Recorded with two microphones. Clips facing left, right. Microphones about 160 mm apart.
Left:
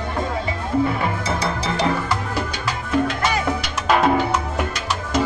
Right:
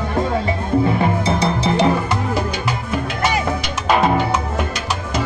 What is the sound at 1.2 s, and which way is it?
Music, 20° right (ahead or behind).